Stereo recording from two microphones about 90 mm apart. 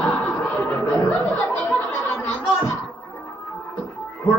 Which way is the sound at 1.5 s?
20° left (ahead or behind).